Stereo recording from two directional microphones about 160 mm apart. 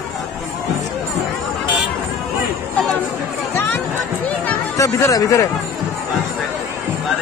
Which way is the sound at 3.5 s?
15° left (ahead or behind).